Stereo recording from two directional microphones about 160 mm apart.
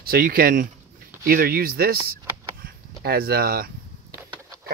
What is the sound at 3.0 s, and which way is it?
Speech, 70° right (ahead or behind).